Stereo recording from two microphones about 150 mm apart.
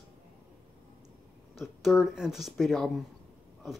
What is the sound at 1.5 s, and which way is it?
Speech, centre (ahead or behind).